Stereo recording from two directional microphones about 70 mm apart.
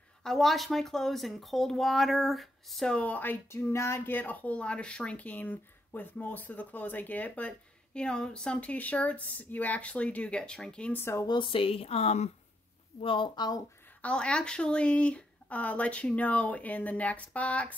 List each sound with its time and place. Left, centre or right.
0.2 s speech: centre
2.9 s speech: left
10.9 s speech: left
13.4 s speech: left
14.0 s speech: centre